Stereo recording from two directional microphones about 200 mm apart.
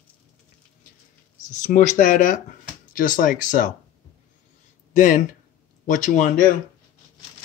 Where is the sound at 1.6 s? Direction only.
40° left (ahead or behind).